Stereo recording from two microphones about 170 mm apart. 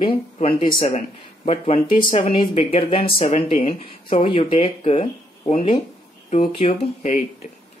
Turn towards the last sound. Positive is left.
turn(degrees=45)  # may be behind; listen again after turning